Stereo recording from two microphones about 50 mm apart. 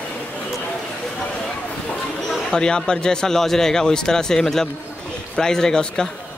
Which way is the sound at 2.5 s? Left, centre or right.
Centre.